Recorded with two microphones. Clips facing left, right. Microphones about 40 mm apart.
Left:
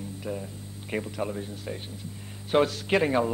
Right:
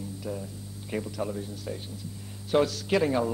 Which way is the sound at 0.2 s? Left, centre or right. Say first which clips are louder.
Left 3 dB; left.